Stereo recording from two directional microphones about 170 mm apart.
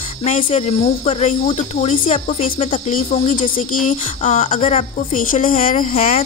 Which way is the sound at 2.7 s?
50° left (ahead or behind).